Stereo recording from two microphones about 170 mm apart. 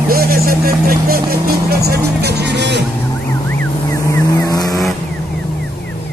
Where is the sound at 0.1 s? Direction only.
60° right (ahead or behind); by 2.8 s 85° right.